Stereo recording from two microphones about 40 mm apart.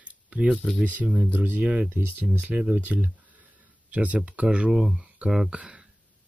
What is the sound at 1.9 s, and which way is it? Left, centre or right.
Speech, right.